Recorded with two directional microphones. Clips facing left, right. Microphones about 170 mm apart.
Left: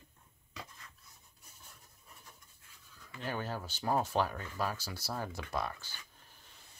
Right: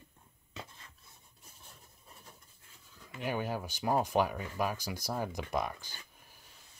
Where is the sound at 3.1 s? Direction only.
15° right (ahead or behind).